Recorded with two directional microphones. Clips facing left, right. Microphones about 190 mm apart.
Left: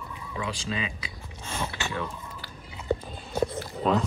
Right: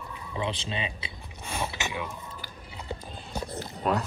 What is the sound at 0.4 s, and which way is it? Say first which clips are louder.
Speech: even; 25° right (ahead or behind).